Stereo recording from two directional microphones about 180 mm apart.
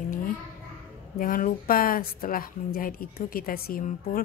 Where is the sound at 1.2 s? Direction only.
50° left (ahead or behind).